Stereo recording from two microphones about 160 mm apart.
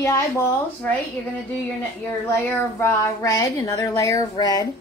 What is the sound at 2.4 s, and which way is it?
Speech, 15° left (ahead or behind).